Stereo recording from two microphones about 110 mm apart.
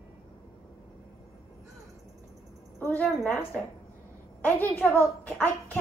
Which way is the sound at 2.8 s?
15° left (ahead or behind).